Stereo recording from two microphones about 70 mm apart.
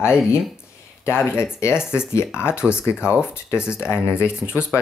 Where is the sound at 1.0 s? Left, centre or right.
Left.